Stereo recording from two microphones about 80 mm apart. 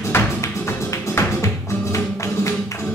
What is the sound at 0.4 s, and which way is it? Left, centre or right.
Music, left.